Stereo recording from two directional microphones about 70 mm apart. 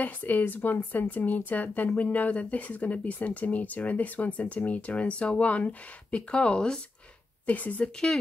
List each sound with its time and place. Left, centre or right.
0.0 s speech: left